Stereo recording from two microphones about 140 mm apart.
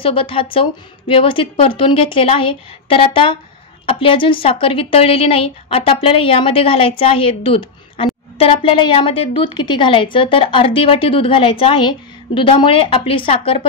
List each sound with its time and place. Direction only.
0.0 s a woman's voice: 40° left (ahead or behind)